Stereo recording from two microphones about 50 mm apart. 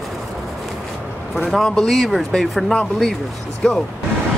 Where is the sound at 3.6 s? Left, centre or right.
Centre.